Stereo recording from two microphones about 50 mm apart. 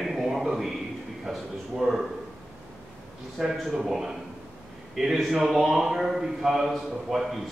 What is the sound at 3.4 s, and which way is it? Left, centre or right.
A man's voice, centre.